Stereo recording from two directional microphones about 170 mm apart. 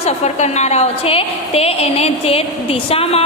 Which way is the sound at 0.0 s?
40° left (ahead or behind).